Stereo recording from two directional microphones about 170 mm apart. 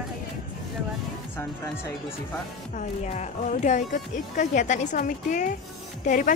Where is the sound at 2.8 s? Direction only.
45° left (ahead or behind).